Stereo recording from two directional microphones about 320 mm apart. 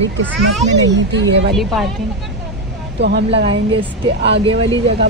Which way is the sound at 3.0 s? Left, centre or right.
Right.